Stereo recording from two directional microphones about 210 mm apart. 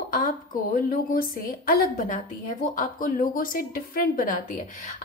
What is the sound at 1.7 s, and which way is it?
A woman's voice, 40° left (ahead or behind).